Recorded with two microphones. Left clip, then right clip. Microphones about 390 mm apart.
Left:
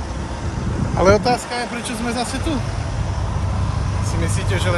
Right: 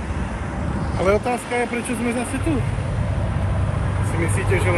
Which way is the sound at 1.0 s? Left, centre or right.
Left.